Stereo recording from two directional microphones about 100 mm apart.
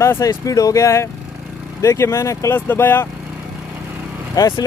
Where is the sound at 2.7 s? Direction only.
20° left (ahead or behind).